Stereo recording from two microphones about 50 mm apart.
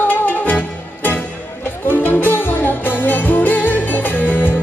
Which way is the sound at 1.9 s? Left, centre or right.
Left.